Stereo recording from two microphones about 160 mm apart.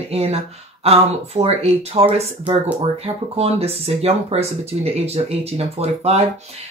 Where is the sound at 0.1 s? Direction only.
40° right (ahead or behind).